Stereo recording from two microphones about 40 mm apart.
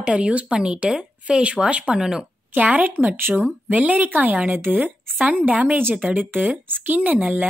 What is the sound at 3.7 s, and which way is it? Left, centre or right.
Speech, right.